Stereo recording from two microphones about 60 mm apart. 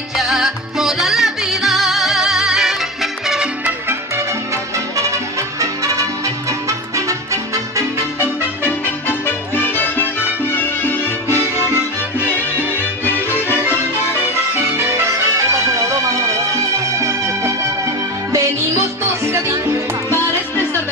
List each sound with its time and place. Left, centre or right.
0.2 s music: centre
4.7 s music: right
8.2 s music: left
15.3 s music: right
16.7 s music: right
19.2 s music: right
20.1 s music: left